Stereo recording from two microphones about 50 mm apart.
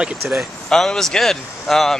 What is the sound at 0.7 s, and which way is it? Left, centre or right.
Speech, centre.